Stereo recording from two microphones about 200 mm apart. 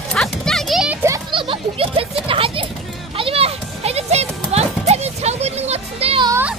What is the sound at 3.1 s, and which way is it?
Children playing, 30° right (ahead or behind).